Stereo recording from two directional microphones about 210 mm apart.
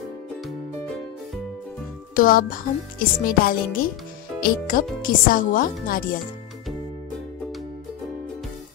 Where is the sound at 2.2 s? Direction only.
45° left (ahead or behind).